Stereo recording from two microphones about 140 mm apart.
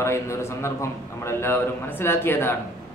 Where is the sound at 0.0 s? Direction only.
20° left (ahead or behind).